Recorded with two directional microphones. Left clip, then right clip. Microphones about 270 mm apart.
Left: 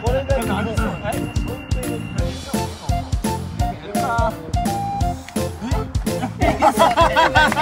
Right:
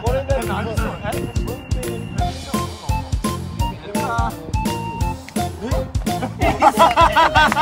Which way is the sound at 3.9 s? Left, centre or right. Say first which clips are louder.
Left 2 dB; centre.